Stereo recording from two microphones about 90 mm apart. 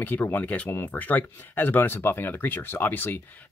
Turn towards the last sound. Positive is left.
turn(degrees=20)  # may be behind; listen again after turning